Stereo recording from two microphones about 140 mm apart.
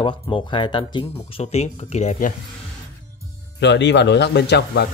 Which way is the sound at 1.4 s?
50° left (ahead or behind).